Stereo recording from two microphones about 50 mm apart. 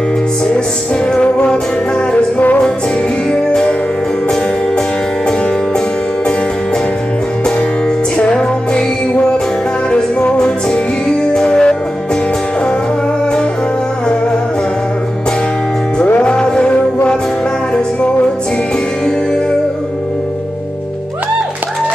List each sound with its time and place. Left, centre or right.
1.1 s music: centre
2.1 s music: left
3.3 s music: centre
8.2 s music: left
10.3 s music: centre
16.2 s music: left